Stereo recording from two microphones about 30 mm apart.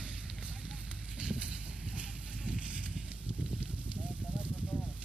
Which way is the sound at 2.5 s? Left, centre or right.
Right.